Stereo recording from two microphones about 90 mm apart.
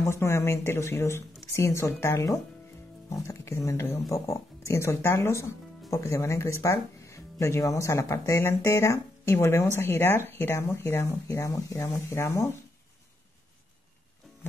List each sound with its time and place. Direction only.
0.0 s speech: 30° left (ahead or behind)